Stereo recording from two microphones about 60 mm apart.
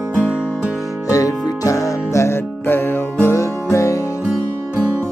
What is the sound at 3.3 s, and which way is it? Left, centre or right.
Music, left.